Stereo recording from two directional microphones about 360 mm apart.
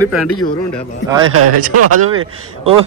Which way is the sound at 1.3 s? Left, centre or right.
Right.